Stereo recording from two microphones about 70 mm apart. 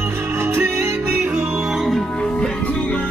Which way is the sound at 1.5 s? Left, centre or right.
Centre.